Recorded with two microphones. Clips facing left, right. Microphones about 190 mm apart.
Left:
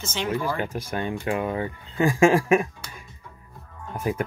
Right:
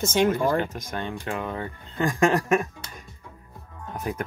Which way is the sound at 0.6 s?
10° left (ahead or behind).